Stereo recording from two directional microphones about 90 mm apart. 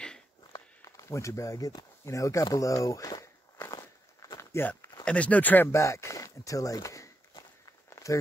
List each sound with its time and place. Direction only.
0.5 s speech: 40° left (ahead or behind)
3.7 s walk: 45° left (ahead or behind)
4.4 s walk: 30° left (ahead or behind)
5.0 s speech: 15° left (ahead or behind)
5.7 s speech: 35° left (ahead or behind)
7.9 s a sound: 35° left (ahead or behind)